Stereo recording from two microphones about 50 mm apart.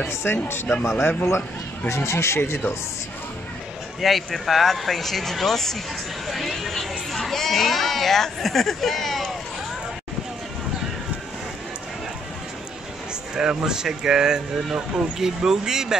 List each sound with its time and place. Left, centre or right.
0.1 s speech: left
0.8 s a man's voice: left
4.0 s speech: centre
13.3 s speech: centre